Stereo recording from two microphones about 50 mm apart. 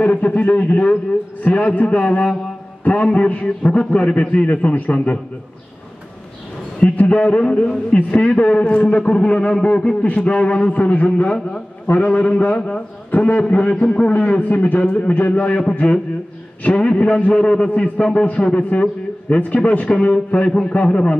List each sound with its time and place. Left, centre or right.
0.0 s a man's voice: left
6.8 s a man's voice: left
16.6 s a man's voice: left